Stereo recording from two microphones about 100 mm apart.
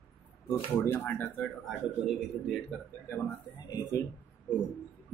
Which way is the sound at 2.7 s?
10° left (ahead or behind).